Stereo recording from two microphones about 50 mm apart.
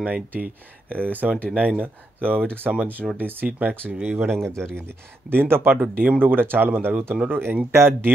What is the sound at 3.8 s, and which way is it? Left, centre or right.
Speech, centre.